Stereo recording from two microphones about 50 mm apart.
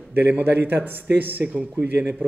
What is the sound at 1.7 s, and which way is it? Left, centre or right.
Speech, right.